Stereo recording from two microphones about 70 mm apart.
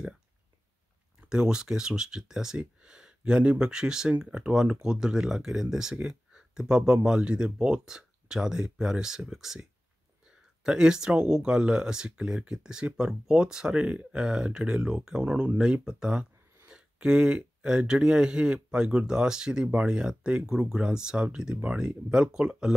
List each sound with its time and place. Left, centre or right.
1.3 s speech: centre